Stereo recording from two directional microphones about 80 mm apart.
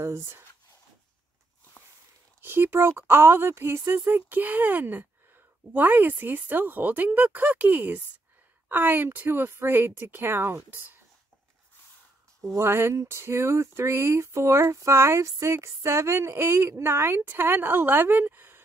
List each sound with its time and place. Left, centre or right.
0.0 s speech: right
2.4 s speech: right
12.5 s speech: right